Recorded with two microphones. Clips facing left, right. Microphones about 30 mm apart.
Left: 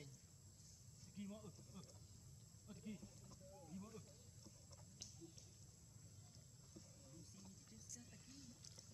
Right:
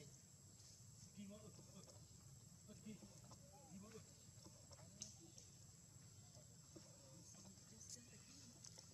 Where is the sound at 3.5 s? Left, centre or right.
Centre.